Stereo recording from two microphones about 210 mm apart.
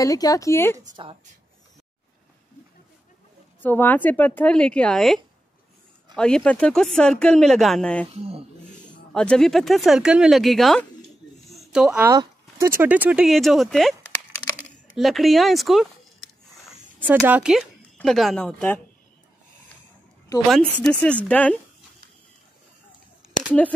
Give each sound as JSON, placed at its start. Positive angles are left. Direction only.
{"t": 0.0, "sound": "a woman's voice", "side_deg": 15}
{"t": 3.6, "sound": "a woman's voice", "side_deg": 10}
{"t": 9.1, "sound": "speech", "side_deg": 5}
{"t": 12.1, "sound": "speech", "side_deg": -15}
{"t": 14.6, "sound": "a sound", "side_deg": 0}
{"t": 17.0, "sound": "speech", "side_deg": -10}
{"t": 20.4, "sound": "a woman's voice", "side_deg": 0}